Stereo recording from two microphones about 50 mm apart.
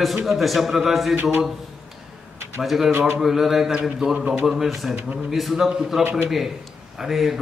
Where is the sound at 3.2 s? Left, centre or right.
Centre.